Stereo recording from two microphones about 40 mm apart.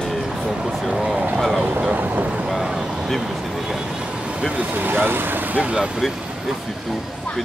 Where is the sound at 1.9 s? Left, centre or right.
Right.